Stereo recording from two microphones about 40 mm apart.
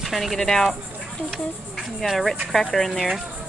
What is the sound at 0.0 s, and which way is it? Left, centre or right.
Speech, centre.